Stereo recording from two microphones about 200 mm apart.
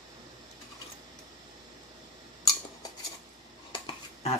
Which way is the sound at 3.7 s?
25° left (ahead or behind).